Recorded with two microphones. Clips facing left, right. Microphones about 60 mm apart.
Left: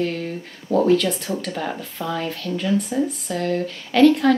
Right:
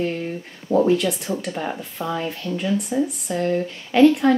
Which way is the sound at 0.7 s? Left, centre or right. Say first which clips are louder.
Even; right.